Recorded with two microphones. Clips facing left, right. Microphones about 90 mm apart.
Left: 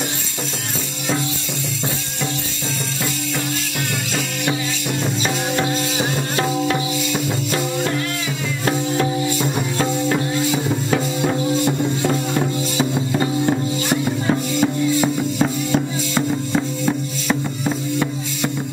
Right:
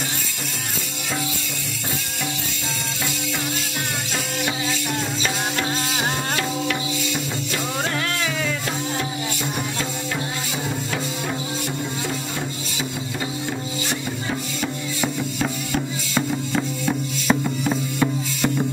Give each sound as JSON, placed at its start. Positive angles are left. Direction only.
{"t": 12.7, "sound": "music", "side_deg": 45}
{"t": 14.0, "sound": "music", "side_deg": 25}
{"t": 16.2, "sound": "music", "side_deg": 5}